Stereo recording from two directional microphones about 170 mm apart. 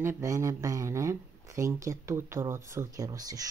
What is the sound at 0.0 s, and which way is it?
Speech, 15° right (ahead or behind).